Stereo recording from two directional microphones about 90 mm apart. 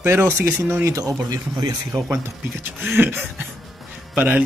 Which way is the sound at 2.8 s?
20° right (ahead or behind).